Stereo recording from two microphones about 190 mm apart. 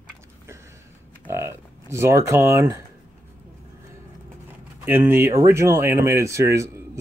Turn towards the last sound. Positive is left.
turn(degrees=-15)  # may be behind; listen again after turning